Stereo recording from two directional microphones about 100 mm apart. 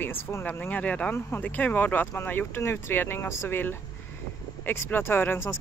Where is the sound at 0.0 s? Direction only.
20° left (ahead or behind).